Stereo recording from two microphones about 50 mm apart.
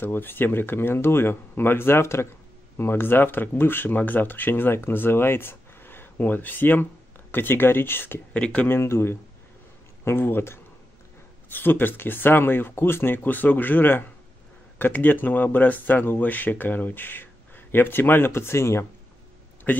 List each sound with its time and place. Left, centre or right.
0.0 s speech: left
2.8 s speech: left
8.3 s speech: centre
8.6 s speech: left
19.7 s a man's voice: left